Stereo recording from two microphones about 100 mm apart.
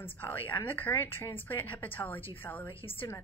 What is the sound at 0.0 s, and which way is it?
A woman's voice, 20° left (ahead or behind).